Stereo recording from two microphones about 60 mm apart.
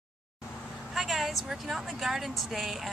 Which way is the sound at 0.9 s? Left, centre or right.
Centre.